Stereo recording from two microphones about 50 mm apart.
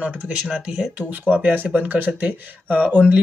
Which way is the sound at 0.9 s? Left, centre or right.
Right.